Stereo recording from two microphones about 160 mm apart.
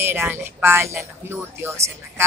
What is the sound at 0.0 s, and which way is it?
Speech, 15° right (ahead or behind).